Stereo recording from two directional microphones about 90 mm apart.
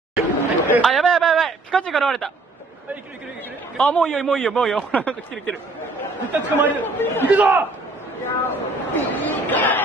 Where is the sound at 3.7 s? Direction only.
10° left (ahead or behind).